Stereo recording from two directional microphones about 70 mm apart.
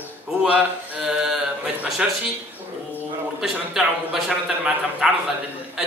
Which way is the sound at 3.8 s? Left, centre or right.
Centre.